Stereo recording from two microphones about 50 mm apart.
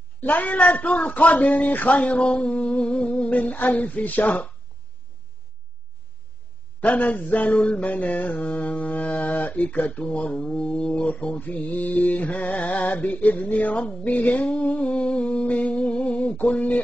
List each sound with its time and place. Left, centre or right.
0.2 s a woman's voice: left
0.6 s speech: left
6.8 s speech: left
7.5 s speech: left